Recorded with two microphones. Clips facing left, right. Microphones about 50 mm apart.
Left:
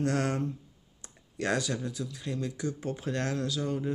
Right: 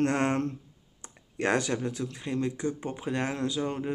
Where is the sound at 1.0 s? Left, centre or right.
Right.